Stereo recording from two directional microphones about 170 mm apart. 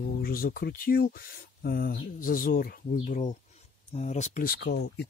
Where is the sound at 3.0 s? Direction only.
45° left (ahead or behind).